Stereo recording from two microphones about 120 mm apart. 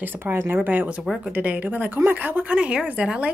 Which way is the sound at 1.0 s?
Centre (ahead or behind).